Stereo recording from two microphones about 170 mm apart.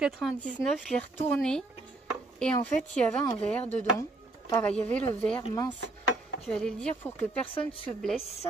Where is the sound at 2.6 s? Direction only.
5° left (ahead or behind).